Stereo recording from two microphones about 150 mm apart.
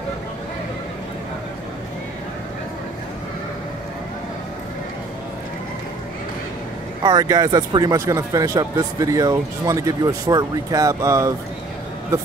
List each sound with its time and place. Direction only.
7.0 s speech: 30° right (ahead or behind)